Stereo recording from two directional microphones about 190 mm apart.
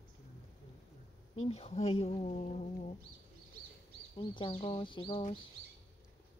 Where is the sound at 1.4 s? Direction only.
30° left (ahead or behind).